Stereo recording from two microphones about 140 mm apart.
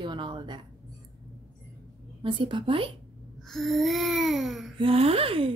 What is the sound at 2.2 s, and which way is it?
Speech, 35° right (ahead or behind).